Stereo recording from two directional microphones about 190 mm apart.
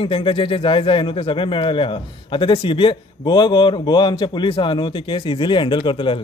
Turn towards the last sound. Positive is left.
turn(degrees=25)  # may be behind; listen again after turning